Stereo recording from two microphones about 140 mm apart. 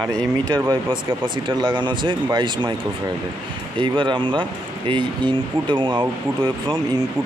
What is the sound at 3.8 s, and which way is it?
Speech, 35° right (ahead or behind).